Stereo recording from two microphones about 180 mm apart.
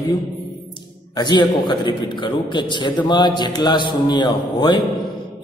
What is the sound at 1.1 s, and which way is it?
A man's voice, 25° left (ahead or behind).